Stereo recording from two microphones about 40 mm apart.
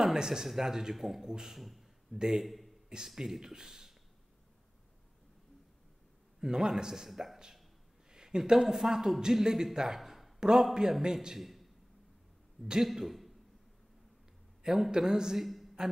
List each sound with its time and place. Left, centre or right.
0.0 s a sound: centre
0.5 s a man's voice: centre
0.9 s a man's voice: centre
1.2 s a man's voice: centre
1.6 s a man's voice: centre
3.2 s a man's voice: centre
6.4 s a man's voice: centre
7.1 s a man's voice: centre
8.1 s a man's voice: centre
9.8 s a sound: centre
10.4 s a man's voice: centre
12.8 s a man's voice: centre
14.6 s a man's voice: centre
15.4 s a sound: centre